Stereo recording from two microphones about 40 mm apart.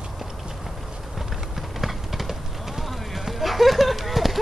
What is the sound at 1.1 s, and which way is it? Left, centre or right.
Clip-clop, centre.